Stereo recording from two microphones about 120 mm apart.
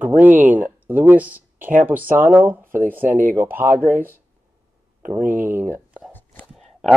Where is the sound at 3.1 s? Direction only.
90° right.